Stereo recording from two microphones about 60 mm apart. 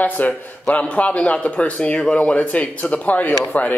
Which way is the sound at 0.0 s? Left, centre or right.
Left.